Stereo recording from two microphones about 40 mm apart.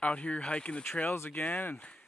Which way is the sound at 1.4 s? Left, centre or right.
Left.